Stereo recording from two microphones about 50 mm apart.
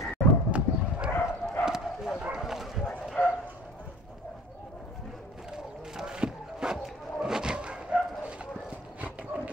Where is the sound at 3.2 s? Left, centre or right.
Left.